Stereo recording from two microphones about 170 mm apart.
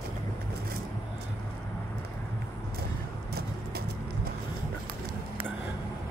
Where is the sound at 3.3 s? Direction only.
65° right (ahead or behind).